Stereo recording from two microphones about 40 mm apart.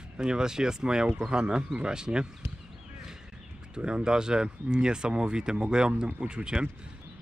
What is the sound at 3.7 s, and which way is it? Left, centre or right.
Speech, right.